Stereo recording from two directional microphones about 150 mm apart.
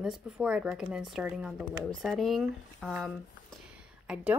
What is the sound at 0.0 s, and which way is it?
Speech, 5° right (ahead or behind).